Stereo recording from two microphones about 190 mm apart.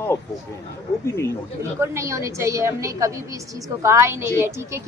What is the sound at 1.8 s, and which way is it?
A woman's voice, 15° right (ahead or behind).